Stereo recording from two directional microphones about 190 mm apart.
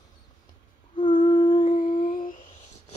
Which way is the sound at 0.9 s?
25° left (ahead or behind).